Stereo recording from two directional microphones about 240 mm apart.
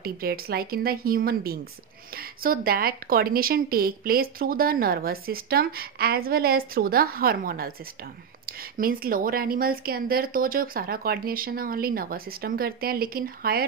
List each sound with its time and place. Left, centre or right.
0.0 s a woman's voice: right